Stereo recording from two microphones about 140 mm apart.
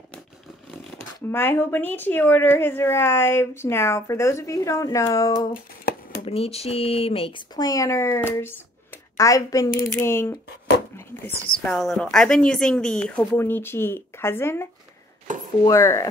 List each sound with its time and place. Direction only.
1.3 s speech: 15° left (ahead or behind)
6.2 s a woman's voice: 45° left (ahead or behind); by 10.3 s 20° left (ahead or behind)
11.6 s speech: centre (ahead or behind); by 14.7 s 15° left (ahead or behind)
15.2 s a sound: 65° right (ahead or behind)
15.6 s a woman's voice: 20° left (ahead or behind)